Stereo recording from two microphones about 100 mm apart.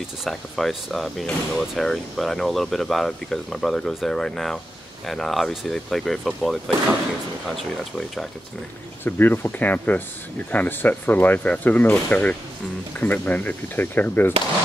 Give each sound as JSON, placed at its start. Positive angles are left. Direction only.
{"t": 0.2, "sound": "speech", "side_deg": 5}
{"t": 9.0, "sound": "speech", "side_deg": 20}